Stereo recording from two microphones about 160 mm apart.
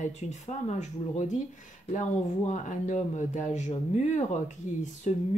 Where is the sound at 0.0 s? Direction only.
50° left (ahead or behind).